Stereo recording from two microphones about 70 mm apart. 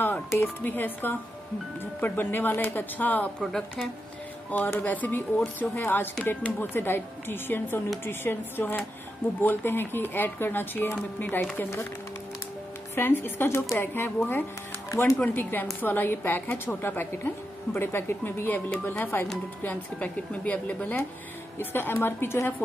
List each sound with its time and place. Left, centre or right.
0.0 s speech: left
4.6 s speech: left
12.9 s speech: left
13.7 s speech: left
14.9 s speech: left
15.2 s speech: left
21.5 s speech: left